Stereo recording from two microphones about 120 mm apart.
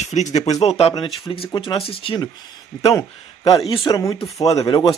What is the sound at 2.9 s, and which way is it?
Speech, 30° left (ahead or behind).